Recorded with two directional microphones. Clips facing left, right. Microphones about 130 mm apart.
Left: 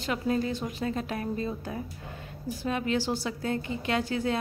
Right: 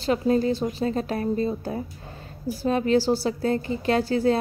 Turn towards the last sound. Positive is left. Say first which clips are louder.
# right 7 dB
turn(degrees=-35)  # may be behind; listen again after turning